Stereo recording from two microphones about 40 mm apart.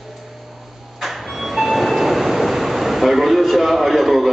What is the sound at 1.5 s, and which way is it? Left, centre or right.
Train, centre.